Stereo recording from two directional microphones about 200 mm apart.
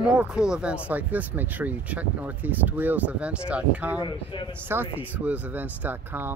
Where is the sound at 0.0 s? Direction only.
5° right (ahead or behind).